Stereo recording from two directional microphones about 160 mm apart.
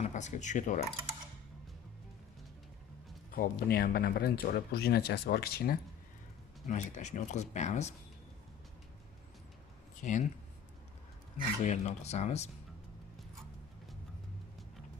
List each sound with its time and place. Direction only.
0.0 s speech: 50° left (ahead or behind)
3.3 s speech: 65° left (ahead or behind)
6.7 s speech: 45° left (ahead or behind)
10.0 s speech: 55° left (ahead or behind)
11.6 s speech: 45° left (ahead or behind)